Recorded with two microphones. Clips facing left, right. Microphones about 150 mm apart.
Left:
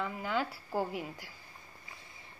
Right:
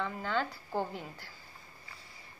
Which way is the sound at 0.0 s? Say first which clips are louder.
Even; 10° left (ahead or behind).